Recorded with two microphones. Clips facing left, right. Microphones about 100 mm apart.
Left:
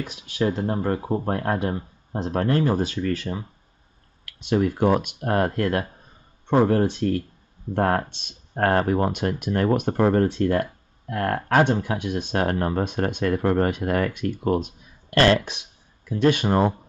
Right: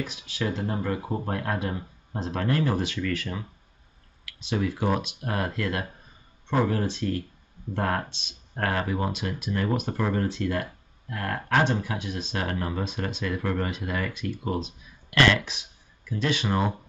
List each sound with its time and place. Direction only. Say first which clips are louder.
0.1 s speech: left 6 dB; 45° left (ahead or behind)
4.4 s speech: left 7 dB; 50° left (ahead or behind)
12.0 s speech: left 7 dB; 55° left (ahead or behind)